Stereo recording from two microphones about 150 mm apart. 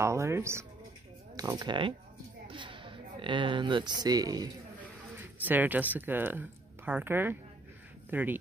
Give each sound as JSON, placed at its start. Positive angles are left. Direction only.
{"t": 0.0, "sound": "speech", "side_deg": -20}
{"t": 5.2, "sound": "speech", "side_deg": -10}